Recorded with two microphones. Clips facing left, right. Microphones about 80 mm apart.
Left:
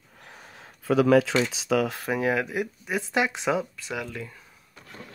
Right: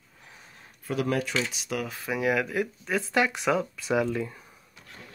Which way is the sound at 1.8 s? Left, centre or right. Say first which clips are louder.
Left 7 dB; left.